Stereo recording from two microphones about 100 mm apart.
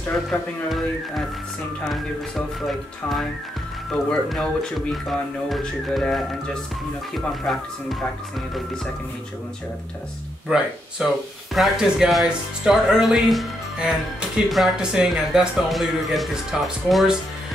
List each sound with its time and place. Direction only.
0.3 s speech: centre (ahead or behind)
3.9 s speech: 5° left (ahead or behind)
11.0 s speech: 10° right (ahead or behind)